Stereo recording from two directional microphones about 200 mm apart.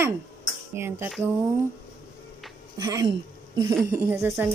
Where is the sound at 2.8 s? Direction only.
15° right (ahead or behind).